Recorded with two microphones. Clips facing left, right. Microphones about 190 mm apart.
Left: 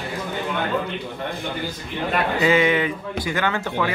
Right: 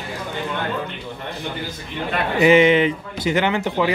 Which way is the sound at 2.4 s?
20° right (ahead or behind).